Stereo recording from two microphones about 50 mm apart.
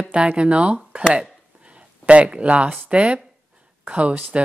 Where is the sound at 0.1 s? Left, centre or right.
Right.